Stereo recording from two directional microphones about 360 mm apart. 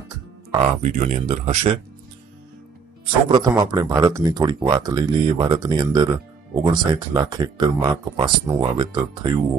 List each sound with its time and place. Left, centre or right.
0.5 s speech: centre
3.3 s speech: centre